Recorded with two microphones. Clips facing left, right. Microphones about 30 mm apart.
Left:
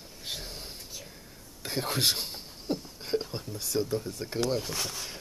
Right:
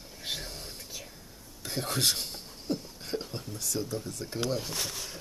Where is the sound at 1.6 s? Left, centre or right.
Centre.